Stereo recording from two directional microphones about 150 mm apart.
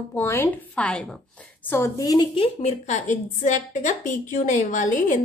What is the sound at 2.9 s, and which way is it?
A woman's voice, 55° left (ahead or behind).